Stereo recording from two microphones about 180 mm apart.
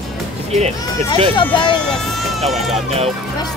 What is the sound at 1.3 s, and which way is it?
Speech, 25° left (ahead or behind).